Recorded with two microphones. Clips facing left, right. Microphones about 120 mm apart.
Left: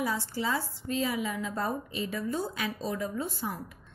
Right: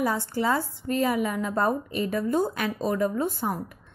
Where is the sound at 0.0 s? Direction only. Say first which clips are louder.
Right 6 dB; 55° right (ahead or behind).